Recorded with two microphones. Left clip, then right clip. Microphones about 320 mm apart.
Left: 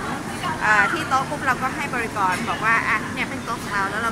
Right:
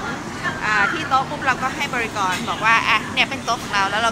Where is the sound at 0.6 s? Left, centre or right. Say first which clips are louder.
Left 1 dB; centre.